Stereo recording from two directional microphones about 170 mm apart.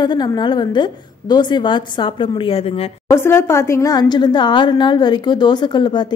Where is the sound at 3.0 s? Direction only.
15° left (ahead or behind).